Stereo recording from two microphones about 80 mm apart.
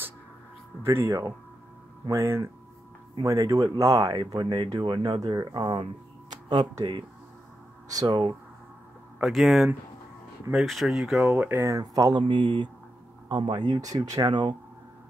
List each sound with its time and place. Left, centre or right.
0.8 s speech: right
4.4 s speech: right
5.2 s speech: right
9.2 s speech: centre
11.2 s speech: right
11.8 s speech: right
12.2 s speech: right
14.3 s speech: right